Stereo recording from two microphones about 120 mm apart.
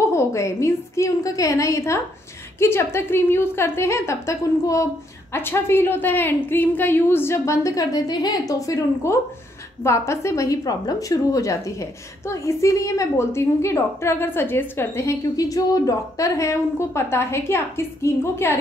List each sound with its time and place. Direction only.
0.1 s a woman's voice: 25° left (ahead or behind)